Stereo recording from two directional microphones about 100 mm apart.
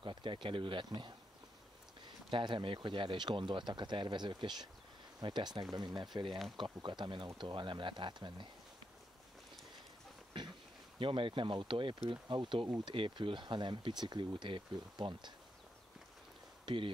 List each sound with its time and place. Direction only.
0.0 s speech: 55° right (ahead or behind)
0.8 s speech: 45° right (ahead or behind)
11.0 s speech: 60° right (ahead or behind)
16.6 s speech: 60° right (ahead or behind)